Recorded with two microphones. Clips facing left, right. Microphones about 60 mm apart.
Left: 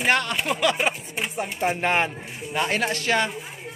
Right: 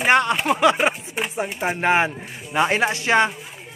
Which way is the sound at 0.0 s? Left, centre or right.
Right.